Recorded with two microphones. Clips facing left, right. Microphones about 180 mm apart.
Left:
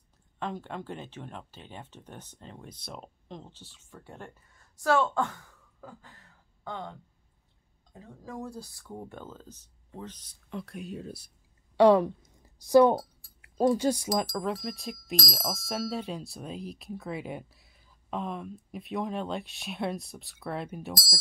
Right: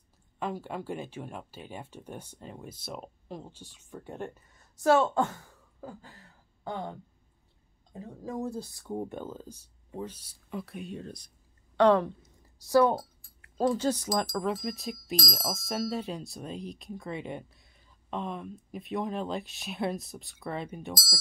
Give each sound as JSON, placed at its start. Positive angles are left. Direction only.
{"t": 0.4, "sound": "speech", "side_deg": -10}
{"t": 7.9, "sound": "speech", "side_deg": -20}
{"t": 14.3, "sound": "speech", "side_deg": 0}